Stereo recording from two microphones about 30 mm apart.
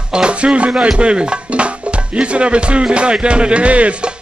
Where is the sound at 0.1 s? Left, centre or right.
Right.